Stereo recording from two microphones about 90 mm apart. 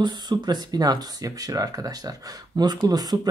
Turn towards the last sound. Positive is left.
turn(degrees=-45)  # may be behind; listen again after turning